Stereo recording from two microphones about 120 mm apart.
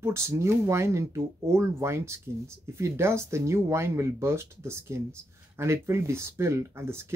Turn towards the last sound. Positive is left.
turn(degrees=-20)  # may be behind; listen again after turning